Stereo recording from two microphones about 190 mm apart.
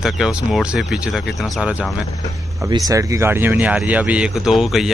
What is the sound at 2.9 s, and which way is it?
A man's voice, 15° right (ahead or behind).